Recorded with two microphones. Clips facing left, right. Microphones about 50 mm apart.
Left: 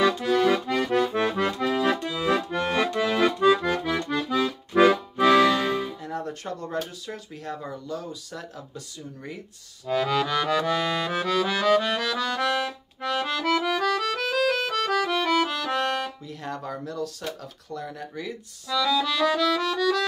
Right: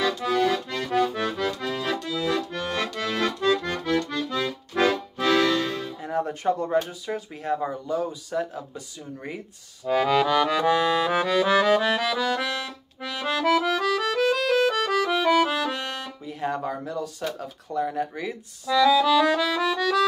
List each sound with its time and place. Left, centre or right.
0.2 s accordion: centre
1.1 s accordion: centre
5.9 s a sound: centre
7.1 s speech: centre
9.8 s accordion: centre
16.3 s speech: centre